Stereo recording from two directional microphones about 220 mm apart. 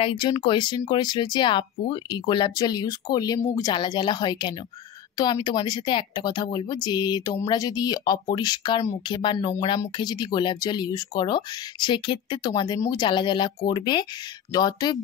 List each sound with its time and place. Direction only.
0.0 s speech: 20° left (ahead or behind)